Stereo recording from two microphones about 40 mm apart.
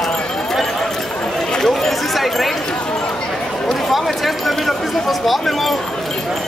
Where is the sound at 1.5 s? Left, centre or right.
Centre.